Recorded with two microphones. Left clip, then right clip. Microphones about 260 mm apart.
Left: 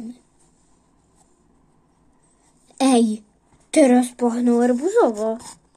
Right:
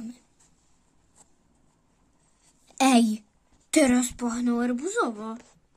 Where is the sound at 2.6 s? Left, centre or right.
Right.